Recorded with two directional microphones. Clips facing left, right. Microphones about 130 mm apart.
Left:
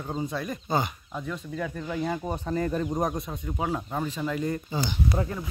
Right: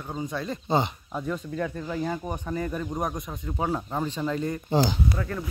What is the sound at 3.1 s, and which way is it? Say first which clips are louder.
Speech: left 2 dB; 25° left (ahead or behind).